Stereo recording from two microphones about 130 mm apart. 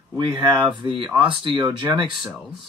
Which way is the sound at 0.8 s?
40° right (ahead or behind).